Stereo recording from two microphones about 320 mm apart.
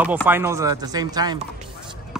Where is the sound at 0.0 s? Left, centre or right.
Centre.